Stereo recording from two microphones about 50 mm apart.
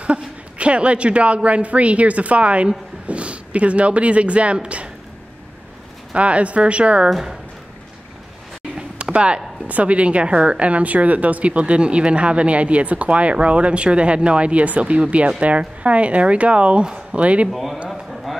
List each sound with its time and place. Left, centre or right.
0.0 s speech: right
6.1 s speech: right
7.1 s speech: centre
8.7 s speech: right
17.5 s speech: centre
17.8 s a sound: centre